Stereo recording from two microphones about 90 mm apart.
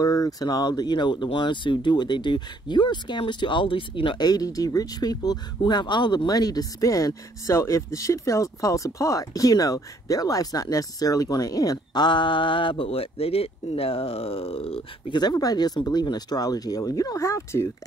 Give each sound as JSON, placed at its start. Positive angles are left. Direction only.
{"t": 0.0, "sound": "speech", "side_deg": 40}
{"t": 4.2, "sound": "speech", "side_deg": 45}
{"t": 15.1, "sound": "speech", "side_deg": 45}